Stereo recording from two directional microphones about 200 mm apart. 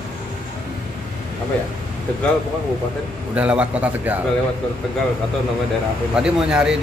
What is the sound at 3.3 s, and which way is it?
Speech, 5° right (ahead or behind).